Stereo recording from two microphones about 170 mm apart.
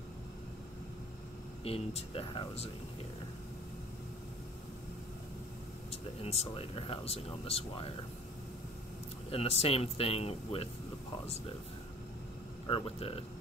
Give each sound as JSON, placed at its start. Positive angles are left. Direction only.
{"t": 1.6, "sound": "speech", "side_deg": 35}
{"t": 5.9, "sound": "speech", "side_deg": 40}
{"t": 9.3, "sound": "speech", "side_deg": 35}
{"t": 12.6, "sound": "speech", "side_deg": 30}